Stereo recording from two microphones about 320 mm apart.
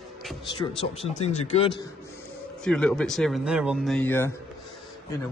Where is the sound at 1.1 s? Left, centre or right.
Left.